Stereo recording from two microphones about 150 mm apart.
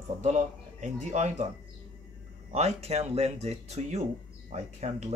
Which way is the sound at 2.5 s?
45° right (ahead or behind).